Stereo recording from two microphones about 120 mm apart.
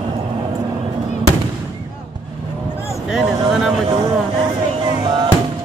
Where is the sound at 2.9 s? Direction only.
Centre (ahead or behind).